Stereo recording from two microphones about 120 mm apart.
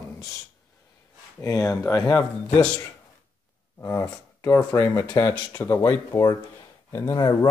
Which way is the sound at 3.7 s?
20° left (ahead or behind).